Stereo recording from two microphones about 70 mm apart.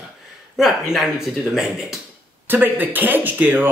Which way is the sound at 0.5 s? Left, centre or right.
Centre.